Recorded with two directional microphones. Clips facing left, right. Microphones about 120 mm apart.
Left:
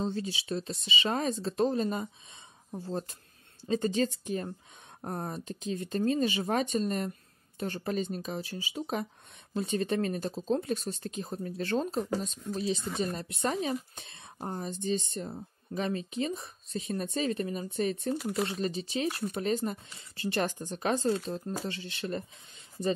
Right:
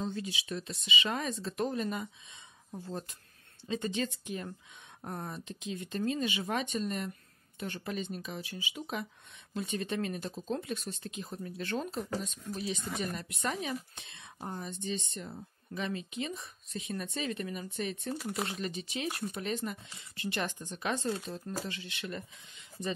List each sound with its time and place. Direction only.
0.0 s speech: 35° left (ahead or behind)
12.4 s speech: 25° left (ahead or behind)